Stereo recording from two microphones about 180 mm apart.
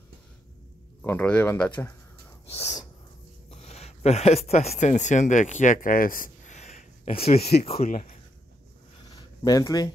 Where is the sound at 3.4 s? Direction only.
35° left (ahead or behind).